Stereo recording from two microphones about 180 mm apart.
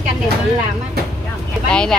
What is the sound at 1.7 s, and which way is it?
Speech, 5° left (ahead or behind).